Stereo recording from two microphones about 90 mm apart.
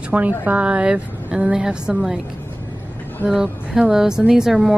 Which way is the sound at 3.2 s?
5° right (ahead or behind).